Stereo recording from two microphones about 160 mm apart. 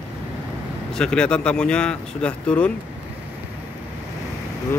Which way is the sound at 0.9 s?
5° left (ahead or behind).